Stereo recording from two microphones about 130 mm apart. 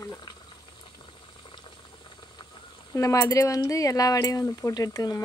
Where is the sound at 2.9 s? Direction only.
25° left (ahead or behind).